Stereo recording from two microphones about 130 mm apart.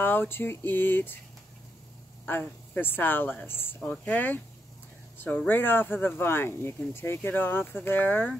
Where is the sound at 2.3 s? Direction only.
15° left (ahead or behind).